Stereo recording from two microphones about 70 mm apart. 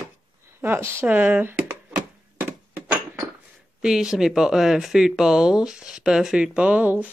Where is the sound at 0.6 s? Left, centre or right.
Right.